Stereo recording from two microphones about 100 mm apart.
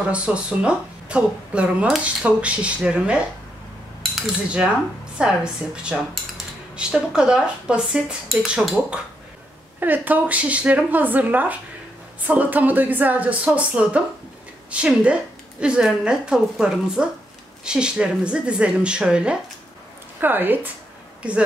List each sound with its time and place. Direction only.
0.1 s speech: 10° right (ahead or behind)
5.2 s speech: 10° right (ahead or behind)
20.2 s a woman's voice: 20° right (ahead or behind)